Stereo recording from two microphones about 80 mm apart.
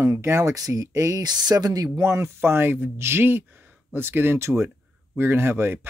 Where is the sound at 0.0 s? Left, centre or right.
Right.